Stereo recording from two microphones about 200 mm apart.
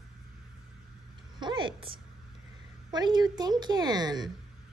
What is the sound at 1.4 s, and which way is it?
A woman's voice, 25° right (ahead or behind).